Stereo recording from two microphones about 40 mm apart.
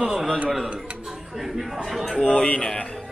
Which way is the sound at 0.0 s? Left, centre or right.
Centre.